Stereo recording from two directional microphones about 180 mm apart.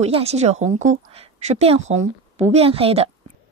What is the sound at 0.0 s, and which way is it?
A woman's voice, 35° right (ahead or behind).